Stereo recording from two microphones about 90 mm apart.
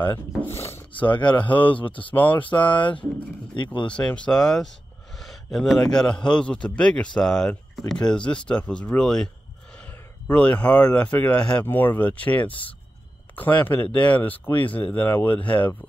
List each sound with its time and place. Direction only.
0.5 s filing: 30° left (ahead or behind)
1.1 s speech: 60° left (ahead or behind)
1.7 s speech: 70° left (ahead or behind)
3.9 s speech: 15° left (ahead or behind)
9.8 s speech: 15° left (ahead or behind)